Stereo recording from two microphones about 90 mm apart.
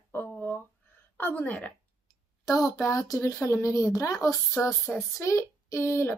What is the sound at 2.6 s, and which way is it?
Speech, 40° left (ahead or behind).